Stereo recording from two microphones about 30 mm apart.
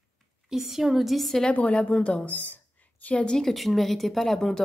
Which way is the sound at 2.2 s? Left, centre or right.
Left.